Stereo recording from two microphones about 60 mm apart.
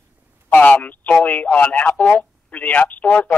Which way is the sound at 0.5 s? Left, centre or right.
Left.